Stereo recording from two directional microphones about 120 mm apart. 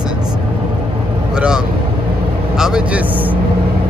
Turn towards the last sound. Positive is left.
turn(degrees=-10)  # may be behind; listen again after turning